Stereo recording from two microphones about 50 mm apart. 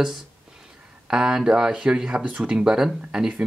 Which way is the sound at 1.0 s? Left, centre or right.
Centre.